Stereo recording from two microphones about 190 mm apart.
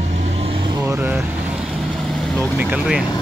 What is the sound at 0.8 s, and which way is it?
Vehicle, 10° right (ahead or behind).